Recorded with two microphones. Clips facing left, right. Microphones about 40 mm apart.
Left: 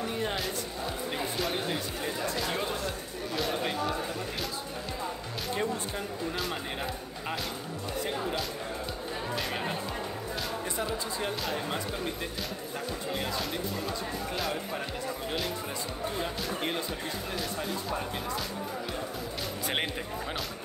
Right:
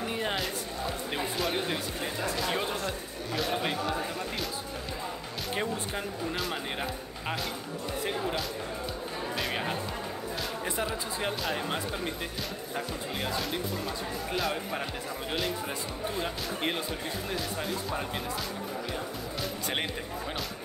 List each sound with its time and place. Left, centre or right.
0.1 s a sound: right
1.4 s speech: centre
5.5 s speech: right
6.3 s speech: centre
9.4 s speech: centre
16.2 s speech: centre